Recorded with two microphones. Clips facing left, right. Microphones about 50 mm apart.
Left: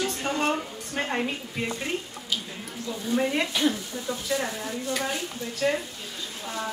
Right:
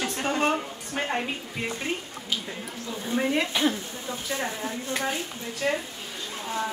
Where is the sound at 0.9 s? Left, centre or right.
Centre.